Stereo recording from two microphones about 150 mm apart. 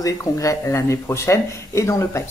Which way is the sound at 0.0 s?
20° left (ahead or behind).